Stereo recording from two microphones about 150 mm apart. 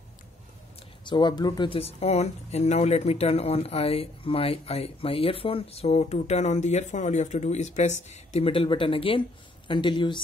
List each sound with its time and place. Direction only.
1.0 s speech: 30° left (ahead or behind)